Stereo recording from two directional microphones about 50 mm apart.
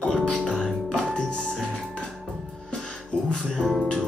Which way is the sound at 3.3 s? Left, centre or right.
Centre.